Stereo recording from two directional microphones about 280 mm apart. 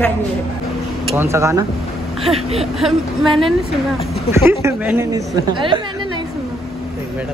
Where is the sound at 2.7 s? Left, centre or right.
Centre.